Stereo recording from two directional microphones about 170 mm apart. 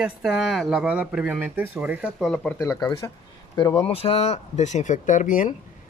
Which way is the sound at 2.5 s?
20° left (ahead or behind).